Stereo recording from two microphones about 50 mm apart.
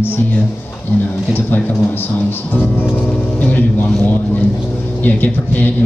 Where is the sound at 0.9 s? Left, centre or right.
Left.